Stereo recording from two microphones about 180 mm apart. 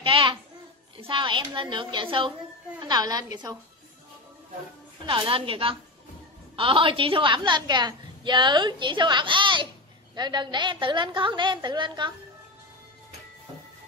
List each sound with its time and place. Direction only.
0.0 s a sound: 25° right (ahead or behind)
1.0 s a woman's voice: 25° right (ahead or behind)
5.0 s a woman's voice: 30° right (ahead or behind)